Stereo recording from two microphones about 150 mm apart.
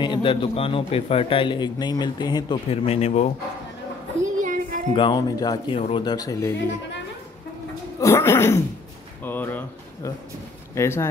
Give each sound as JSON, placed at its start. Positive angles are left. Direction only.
{"t": 0.0, "sound": "a man's voice", "side_deg": 30}
{"t": 2.7, "sound": "speech", "side_deg": 40}
{"t": 4.4, "sound": "child singing", "side_deg": -60}
{"t": 4.9, "sound": "speech", "side_deg": 30}
{"t": 5.7, "sound": "a man's voice", "side_deg": 40}
{"t": 6.0, "sound": "speech", "side_deg": 25}
{"t": 8.0, "sound": "speech", "side_deg": 15}